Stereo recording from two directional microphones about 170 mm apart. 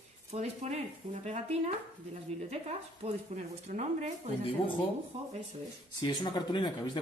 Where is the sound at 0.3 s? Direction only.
40° right (ahead or behind).